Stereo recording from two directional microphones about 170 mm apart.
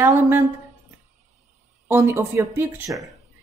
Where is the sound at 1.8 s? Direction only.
15° right (ahead or behind).